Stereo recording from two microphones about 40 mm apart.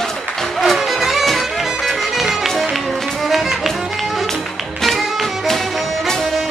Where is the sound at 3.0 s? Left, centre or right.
Centre.